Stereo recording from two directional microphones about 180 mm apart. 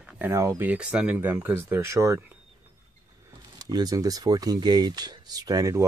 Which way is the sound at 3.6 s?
20° right (ahead or behind).